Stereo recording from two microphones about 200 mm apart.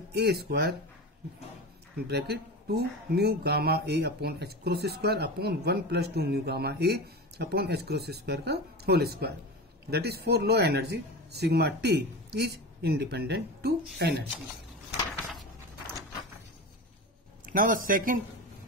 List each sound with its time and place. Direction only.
0.1 s speech: 55° right (ahead or behind)
2.0 s speech: 55° right (ahead or behind)
17.5 s speech: 45° right (ahead or behind)